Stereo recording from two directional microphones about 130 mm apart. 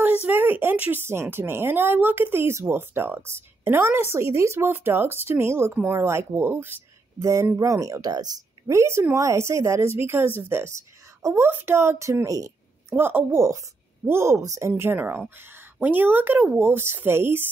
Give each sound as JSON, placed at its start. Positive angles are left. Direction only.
{"t": 0.2, "sound": "a woman's voice", "side_deg": -15}